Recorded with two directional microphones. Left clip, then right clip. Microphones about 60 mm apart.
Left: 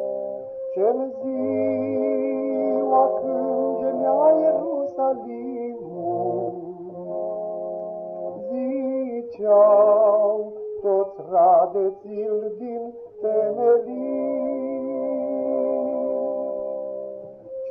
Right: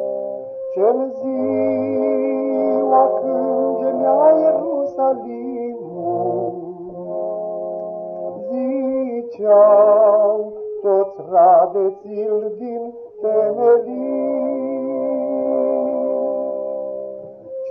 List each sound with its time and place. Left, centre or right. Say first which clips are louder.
0.7 s music: right 5 dB; right
8.5 s music: right 5 dB; centre; by 10.4 s right
10.8 s mantra: right 5 dB; right
12.7 s a sound: right 4 dB; right